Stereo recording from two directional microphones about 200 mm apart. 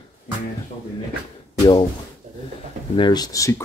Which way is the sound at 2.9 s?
20° left (ahead or behind).